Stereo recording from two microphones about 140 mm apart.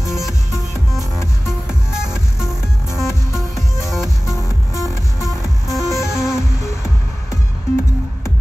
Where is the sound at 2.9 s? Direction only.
20° left (ahead or behind).